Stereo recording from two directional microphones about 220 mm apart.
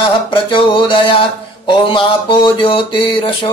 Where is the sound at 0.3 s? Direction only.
25° left (ahead or behind).